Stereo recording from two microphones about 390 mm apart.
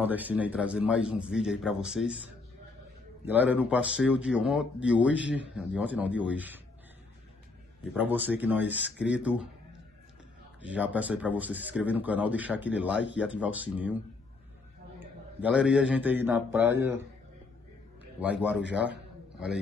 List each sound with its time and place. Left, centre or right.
0.0 s a man's voice: centre
7.9 s a man's voice: centre
10.8 s a man's voice: centre
13.0 s speech: left
13.3 s a man's voice: centre
18.2 s a man's voice: centre